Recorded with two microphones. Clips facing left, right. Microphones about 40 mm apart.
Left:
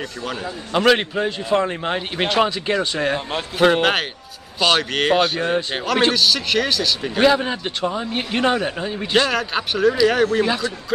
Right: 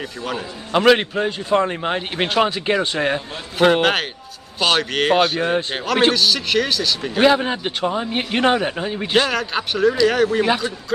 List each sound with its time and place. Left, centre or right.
0.3 s a man's voice: centre
3.5 s a man's voice: centre
7.2 s a man's voice: centre
10.4 s a man's voice: centre